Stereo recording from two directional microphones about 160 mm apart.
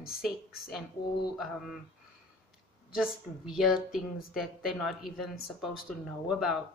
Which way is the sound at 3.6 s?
5° right (ahead or behind).